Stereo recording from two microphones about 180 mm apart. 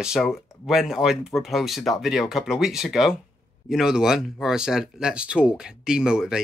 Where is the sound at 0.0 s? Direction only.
Centre (ahead or behind).